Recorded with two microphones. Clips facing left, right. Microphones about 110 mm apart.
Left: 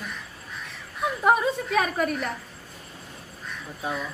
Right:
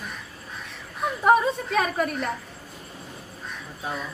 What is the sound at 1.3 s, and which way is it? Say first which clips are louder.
A woman's voice: right 2 dB; centre (ahead or behind).